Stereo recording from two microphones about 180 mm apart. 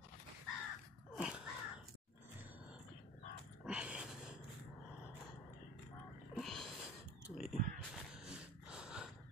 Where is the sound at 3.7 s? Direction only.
5° right (ahead or behind).